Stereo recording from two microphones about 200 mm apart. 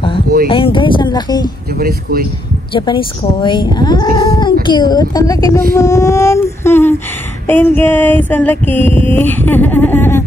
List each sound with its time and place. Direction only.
0.5 s speech: 25° left (ahead or behind)
1.8 s speech: 45° right (ahead or behind)
2.7 s speech: 25° left (ahead or behind)
5.8 s a sound: 15° left (ahead or behind)